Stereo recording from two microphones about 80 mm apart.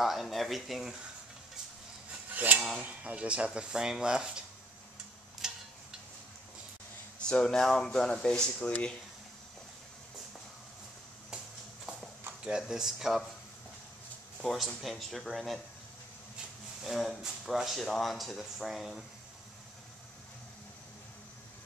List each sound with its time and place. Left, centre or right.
0.0 s speech: centre
2.3 s cutlery: centre
2.8 s speech: centre
5.4 s tick-tock: centre
7.2 s speech: centre
12.4 s speech: centre
14.4 s speech: centre
16.8 s speech: centre